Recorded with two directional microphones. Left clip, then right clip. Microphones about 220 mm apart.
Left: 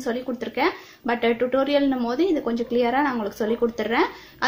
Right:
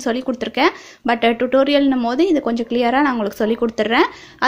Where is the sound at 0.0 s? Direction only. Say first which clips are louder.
Right 6 dB; 40° right (ahead or behind).